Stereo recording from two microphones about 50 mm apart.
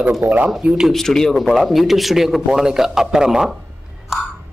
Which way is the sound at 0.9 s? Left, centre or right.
Centre.